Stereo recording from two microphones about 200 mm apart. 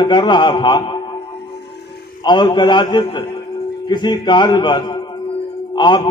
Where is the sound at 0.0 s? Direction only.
20° left (ahead or behind).